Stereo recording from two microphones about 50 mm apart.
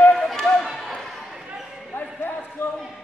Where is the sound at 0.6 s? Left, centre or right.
Centre.